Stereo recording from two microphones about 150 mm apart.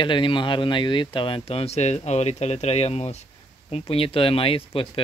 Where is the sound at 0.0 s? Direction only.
35° left (ahead or behind).